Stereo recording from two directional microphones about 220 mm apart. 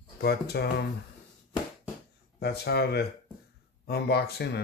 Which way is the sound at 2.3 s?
45° left (ahead or behind).